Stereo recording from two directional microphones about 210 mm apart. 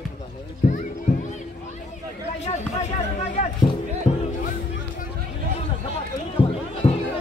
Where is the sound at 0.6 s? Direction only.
40° left (ahead or behind).